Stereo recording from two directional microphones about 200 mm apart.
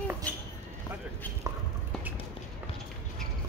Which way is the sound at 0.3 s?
5° left (ahead or behind).